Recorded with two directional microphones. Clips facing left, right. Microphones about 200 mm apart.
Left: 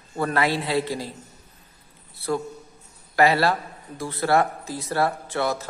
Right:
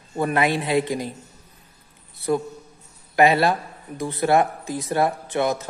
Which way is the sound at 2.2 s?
20° right (ahead or behind).